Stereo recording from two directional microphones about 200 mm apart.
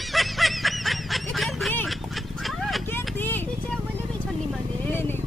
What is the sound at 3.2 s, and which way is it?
Vehicle, 10° left (ahead or behind).